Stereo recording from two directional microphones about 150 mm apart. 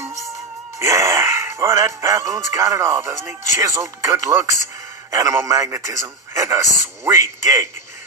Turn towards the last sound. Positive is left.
turn(degrees=-20)  # may be behind; listen again after turning